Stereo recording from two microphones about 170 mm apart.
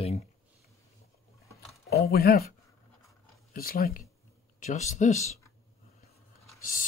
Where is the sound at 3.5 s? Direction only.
60° left (ahead or behind).